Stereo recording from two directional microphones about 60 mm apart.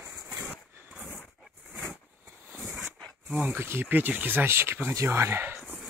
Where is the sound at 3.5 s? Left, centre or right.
Right.